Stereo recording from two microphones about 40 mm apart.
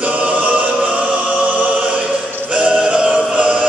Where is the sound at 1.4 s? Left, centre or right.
Right.